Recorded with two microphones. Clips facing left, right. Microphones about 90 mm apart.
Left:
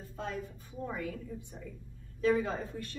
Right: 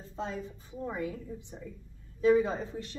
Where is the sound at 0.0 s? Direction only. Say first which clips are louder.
Right 2 dB; 20° right (ahead or behind).